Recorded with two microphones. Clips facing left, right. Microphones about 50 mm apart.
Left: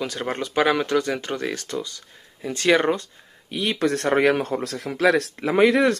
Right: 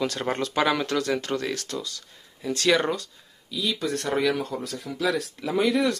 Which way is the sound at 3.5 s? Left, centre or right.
Left.